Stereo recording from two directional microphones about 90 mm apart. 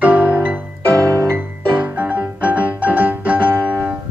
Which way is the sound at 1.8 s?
15° right (ahead or behind).